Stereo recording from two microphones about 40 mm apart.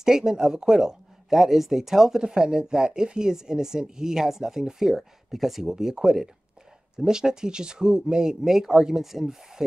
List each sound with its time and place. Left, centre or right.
0.0 s speech: centre
1.4 s speech: centre